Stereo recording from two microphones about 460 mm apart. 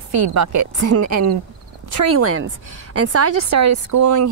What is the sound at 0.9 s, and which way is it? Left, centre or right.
Speech, right.